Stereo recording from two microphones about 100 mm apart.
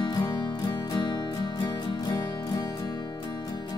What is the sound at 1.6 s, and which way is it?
Music, 45° left (ahead or behind).